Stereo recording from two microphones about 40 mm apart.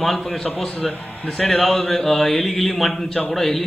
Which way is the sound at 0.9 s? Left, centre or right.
Left.